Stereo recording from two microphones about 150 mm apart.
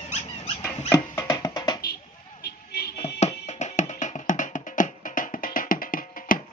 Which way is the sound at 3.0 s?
45° left (ahead or behind).